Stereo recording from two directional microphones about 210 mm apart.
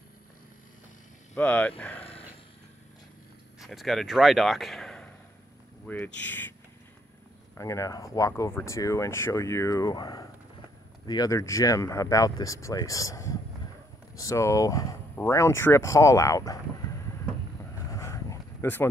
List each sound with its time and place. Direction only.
1.3 s speech: 5° left (ahead or behind)
3.5 s speech: centre (ahead or behind)
7.5 s speech: 15° left (ahead or behind)
17.9 s a sound: 15° left (ahead or behind)